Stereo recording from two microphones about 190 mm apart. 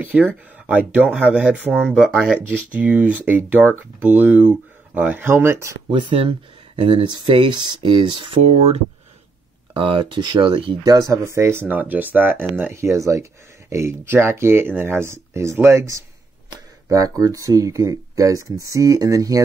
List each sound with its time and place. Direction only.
0.0 s speech: 10° right (ahead or behind)
5.9 s speech: 25° right (ahead or behind)
9.8 s speech: 25° right (ahead or behind)